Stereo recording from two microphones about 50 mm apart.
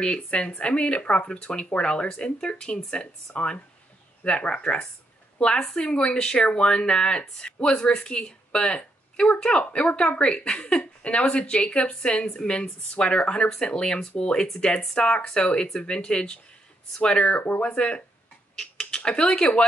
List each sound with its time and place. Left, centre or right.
0.0 s a woman's voice: left